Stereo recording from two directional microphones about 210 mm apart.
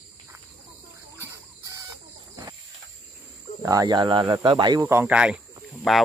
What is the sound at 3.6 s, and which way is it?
Speech, 15° right (ahead or behind).